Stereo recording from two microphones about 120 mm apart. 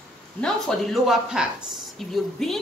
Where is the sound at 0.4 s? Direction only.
Centre (ahead or behind).